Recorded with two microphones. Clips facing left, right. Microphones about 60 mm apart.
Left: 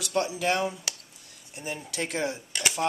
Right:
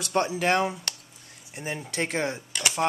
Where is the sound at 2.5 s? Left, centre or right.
Centre.